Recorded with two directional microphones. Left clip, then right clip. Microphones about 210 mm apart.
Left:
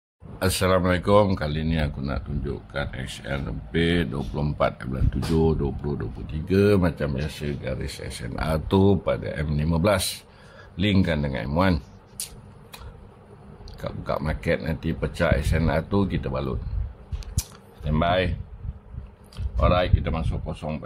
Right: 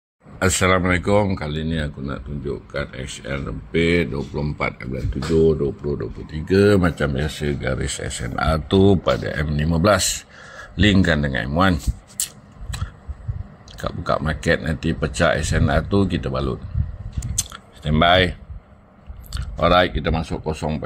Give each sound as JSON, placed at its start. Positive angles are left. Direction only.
{"t": 0.4, "sound": "speech", "side_deg": -10}
{"t": 2.7, "sound": "speech", "side_deg": 5}
{"t": 6.3, "sound": "speech", "side_deg": 0}
{"t": 13.7, "sound": "speech", "side_deg": -15}
{"t": 17.4, "sound": "a sound", "side_deg": -15}
{"t": 19.3, "sound": "speech", "side_deg": -20}